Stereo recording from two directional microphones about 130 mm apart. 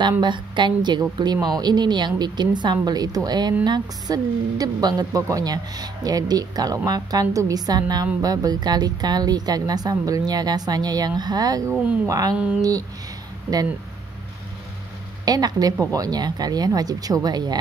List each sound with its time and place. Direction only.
0.2 s a woman's voice: 35° right (ahead or behind)
15.2 s a woman's voice: 30° right (ahead or behind)